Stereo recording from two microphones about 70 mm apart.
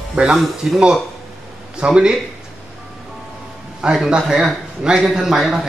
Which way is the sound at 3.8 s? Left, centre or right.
Centre.